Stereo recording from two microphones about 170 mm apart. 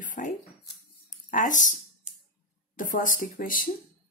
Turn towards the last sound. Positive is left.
turn(degrees=55)  # may be behind; listen again after turning